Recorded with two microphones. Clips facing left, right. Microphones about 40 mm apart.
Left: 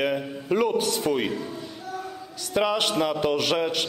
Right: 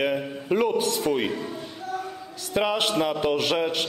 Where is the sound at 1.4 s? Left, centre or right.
Right.